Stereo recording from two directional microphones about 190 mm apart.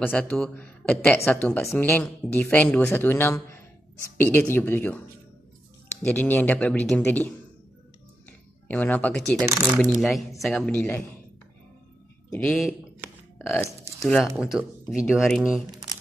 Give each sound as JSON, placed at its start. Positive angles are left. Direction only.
{"t": 0.0, "sound": "a woman's voice", "side_deg": 10}
{"t": 6.0, "sound": "a woman's voice", "side_deg": 10}
{"t": 8.6, "sound": "a woman's voice", "side_deg": 10}
{"t": 12.3, "sound": "speech", "side_deg": 10}
{"t": 13.7, "sound": "a sound", "side_deg": -15}
{"t": 14.0, "sound": "speech", "side_deg": 0}